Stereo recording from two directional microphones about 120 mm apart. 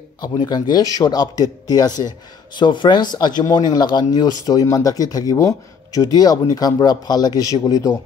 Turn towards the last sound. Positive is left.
turn(degrees=30)  # may be behind; listen again after turning